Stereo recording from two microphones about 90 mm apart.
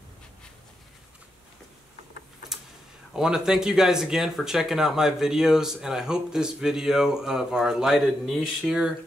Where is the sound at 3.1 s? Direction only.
5° right (ahead or behind).